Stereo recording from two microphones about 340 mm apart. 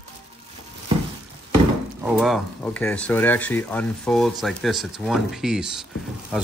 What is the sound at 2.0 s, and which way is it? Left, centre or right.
Speech, centre.